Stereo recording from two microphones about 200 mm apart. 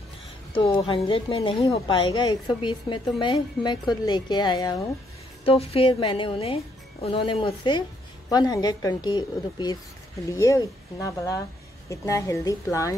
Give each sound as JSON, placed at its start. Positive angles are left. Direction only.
{"t": 0.6, "sound": "speech", "side_deg": 25}